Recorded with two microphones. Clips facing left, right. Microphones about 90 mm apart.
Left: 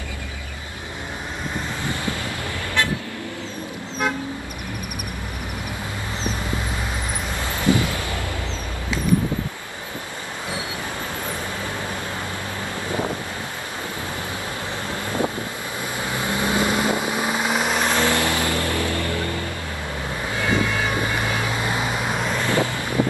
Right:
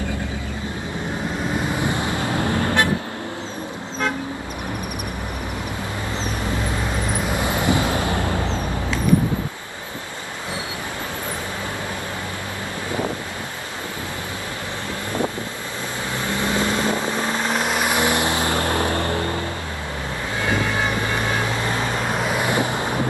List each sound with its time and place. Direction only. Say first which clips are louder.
1.8 s vehicle: right 4 dB; 20° right (ahead or behind)
7.4 s vehicle: left 1 dB; 20° right (ahead or behind)
16.2 s vehicle: even; 15° left (ahead or behind)
17.8 s vehicle: right 1 dB; 15° right (ahead or behind); by 19.4 s 30° right (ahead or behind)
21.5 s vehicle: right 1 dB; 15° left (ahead or behind)
22.3 s vehicle: even; 15° right (ahead or behind)